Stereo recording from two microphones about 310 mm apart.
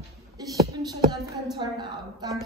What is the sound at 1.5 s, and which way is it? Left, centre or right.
Speech, centre.